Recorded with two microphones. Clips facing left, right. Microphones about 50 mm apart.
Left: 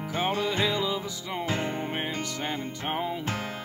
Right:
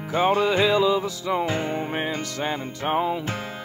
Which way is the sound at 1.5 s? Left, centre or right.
Centre.